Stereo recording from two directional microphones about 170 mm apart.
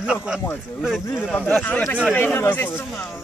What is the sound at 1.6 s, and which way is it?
Speech, 10° left (ahead or behind).